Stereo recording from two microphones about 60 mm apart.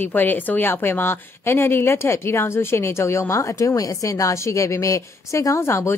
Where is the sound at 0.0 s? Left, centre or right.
Left.